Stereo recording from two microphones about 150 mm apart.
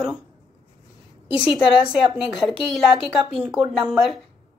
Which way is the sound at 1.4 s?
5° right (ahead or behind).